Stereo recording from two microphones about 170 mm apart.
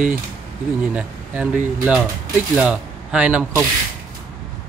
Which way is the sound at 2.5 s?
5° right (ahead or behind).